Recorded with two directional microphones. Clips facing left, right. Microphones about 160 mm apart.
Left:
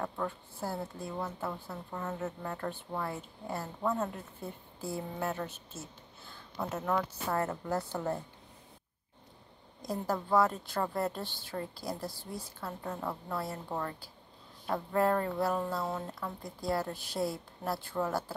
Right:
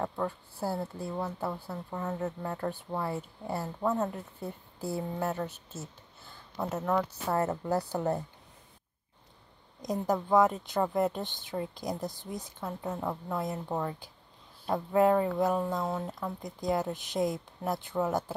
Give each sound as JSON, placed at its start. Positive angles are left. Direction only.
{"t": 0.0, "sound": "a woman's voice", "side_deg": -10}
{"t": 2.0, "sound": "speech", "side_deg": 0}
{"t": 2.4, "sound": "a woman's voice", "side_deg": -10}
{"t": 4.7, "sound": "speech", "side_deg": -40}
{"t": 5.2, "sound": "speech", "side_deg": 0}
{"t": 6.5, "sound": "speech", "side_deg": -5}
{"t": 7.6, "sound": "a woman's voice", "side_deg": -15}
{"t": 9.8, "sound": "a woman's voice", "side_deg": -15}